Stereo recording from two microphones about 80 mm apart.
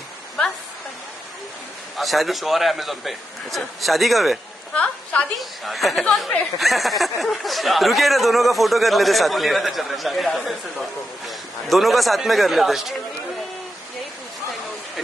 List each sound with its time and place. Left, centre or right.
2.0 s speech: centre
4.7 s a woman's voice: centre
5.4 s speech: centre